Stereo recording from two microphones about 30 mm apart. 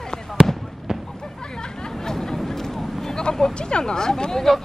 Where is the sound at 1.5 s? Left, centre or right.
Left.